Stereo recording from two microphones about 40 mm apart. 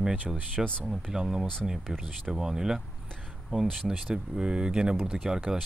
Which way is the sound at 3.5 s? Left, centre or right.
Right.